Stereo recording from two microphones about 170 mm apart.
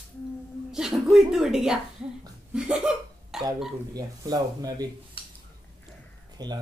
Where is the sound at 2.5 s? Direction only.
5° right (ahead or behind).